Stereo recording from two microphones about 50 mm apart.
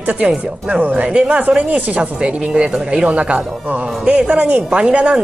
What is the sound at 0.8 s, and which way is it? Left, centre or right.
Speech, right.